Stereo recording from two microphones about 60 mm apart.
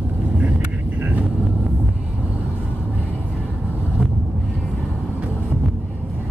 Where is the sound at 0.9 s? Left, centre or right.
Right.